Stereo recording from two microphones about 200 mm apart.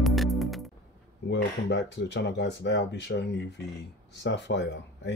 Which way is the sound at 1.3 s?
60° left (ahead or behind).